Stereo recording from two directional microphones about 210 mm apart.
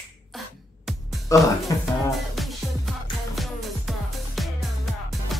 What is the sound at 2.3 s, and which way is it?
Music, centre (ahead or behind).